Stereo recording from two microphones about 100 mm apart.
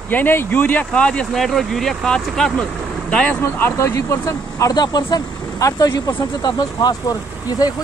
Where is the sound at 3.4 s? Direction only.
30° left (ahead or behind).